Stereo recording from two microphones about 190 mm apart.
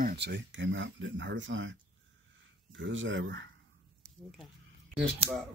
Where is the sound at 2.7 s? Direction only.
80° right.